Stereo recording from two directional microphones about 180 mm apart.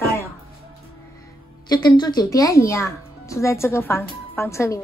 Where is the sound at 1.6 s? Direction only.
25° left (ahead or behind).